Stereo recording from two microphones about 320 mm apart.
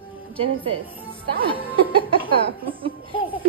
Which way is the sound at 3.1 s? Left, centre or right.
Centre.